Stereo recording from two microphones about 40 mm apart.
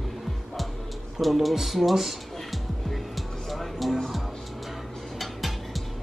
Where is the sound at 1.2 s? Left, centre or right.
Centre.